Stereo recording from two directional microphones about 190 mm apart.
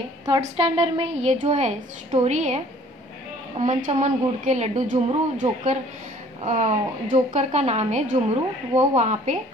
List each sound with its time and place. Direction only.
0.3 s a woman's voice: 30° right (ahead or behind)